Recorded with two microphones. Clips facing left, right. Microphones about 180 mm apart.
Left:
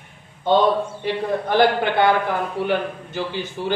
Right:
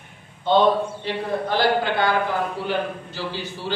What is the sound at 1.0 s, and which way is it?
A man's voice, 15° left (ahead or behind).